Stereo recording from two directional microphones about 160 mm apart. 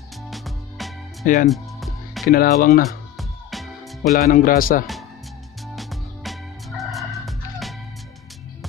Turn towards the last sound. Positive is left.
turn(degrees=0)  # may be behind; listen again after turning